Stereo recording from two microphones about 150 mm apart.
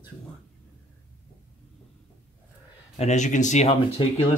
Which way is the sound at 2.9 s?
50° left (ahead or behind).